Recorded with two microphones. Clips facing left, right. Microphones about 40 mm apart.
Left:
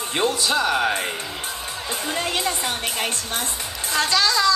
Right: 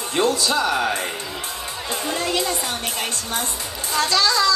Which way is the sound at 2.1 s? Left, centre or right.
Left.